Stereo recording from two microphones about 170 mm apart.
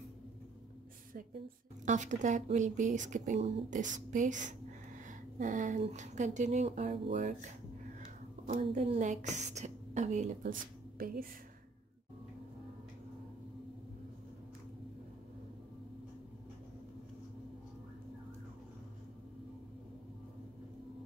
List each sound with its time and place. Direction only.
1.9 s speech: 45° right (ahead or behind)
8.0 s a sound: 50° right (ahead or behind)
8.6 s speech: 35° right (ahead or behind); by 11.2 s 60° right (ahead or behind)